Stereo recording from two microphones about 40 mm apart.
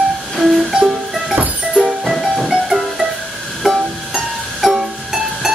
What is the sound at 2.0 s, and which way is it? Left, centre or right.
Music, centre.